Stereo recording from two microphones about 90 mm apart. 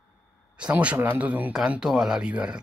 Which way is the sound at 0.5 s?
15° right (ahead or behind).